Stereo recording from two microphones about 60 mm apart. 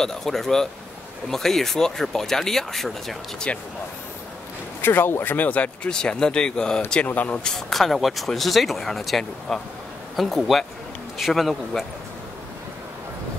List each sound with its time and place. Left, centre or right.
0.0 s speech: centre
3.5 s speech: left
4.8 s speech: left
5.9 s speech: centre
7.1 s speech: left
7.4 s speech: centre